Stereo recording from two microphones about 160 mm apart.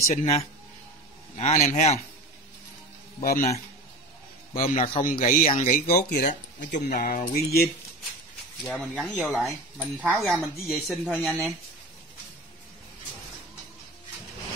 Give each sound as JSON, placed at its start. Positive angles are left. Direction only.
{"t": 0.1, "sound": "a man's voice", "side_deg": 40}
{"t": 3.2, "sound": "speech", "side_deg": 60}
{"t": 4.6, "sound": "speech", "side_deg": 40}
{"t": 5.0, "sound": "speech", "side_deg": 60}
{"t": 8.6, "sound": "speech", "side_deg": 0}